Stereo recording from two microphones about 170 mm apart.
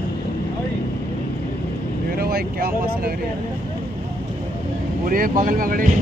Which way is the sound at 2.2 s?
60° right (ahead or behind).